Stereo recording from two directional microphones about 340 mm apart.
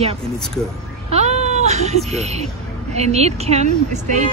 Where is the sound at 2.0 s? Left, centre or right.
Centre.